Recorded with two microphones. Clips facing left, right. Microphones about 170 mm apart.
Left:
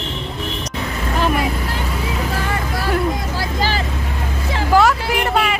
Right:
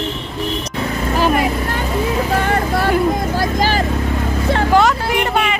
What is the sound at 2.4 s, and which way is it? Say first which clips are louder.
Speech: right 6 dB; 60° right (ahead or behind).